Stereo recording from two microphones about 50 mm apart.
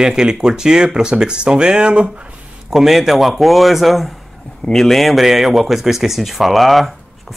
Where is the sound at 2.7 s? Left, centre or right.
Centre.